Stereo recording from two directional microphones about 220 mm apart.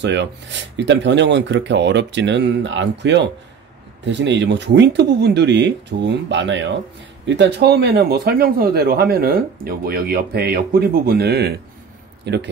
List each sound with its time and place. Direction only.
0.0 s speech: 55° right (ahead or behind)